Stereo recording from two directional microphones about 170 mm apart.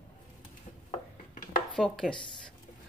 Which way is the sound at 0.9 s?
45° left (ahead or behind).